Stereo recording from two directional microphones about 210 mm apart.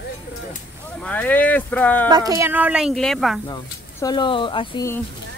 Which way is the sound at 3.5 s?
20° left (ahead or behind).